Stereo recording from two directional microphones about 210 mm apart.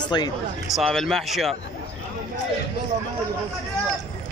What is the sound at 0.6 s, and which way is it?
Speech, centre (ahead or behind).